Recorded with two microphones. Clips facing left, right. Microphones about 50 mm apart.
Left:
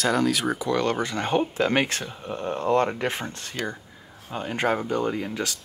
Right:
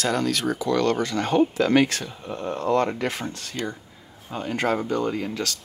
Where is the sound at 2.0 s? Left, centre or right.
Centre.